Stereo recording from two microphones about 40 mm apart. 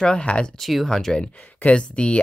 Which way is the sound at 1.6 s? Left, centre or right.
Left.